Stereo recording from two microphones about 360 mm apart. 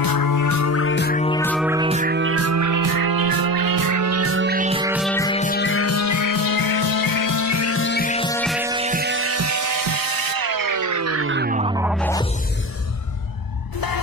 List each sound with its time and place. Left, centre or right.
0.0 s music: left; by 1.4 s centre
1.4 s music: centre
1.7 s music: centre
4.9 s music: centre; by 11.7 s right
11.7 s music: centre